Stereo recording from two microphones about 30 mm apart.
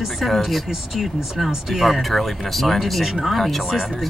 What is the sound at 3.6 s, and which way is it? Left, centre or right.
Speech, centre.